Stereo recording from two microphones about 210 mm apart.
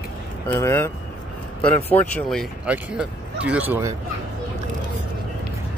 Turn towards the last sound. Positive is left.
turn(degrees=-10)  # may be behind; listen again after turning